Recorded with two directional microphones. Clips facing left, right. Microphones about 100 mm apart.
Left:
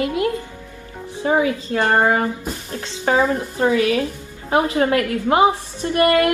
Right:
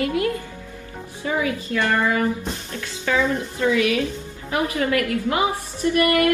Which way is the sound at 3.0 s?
40° left (ahead or behind).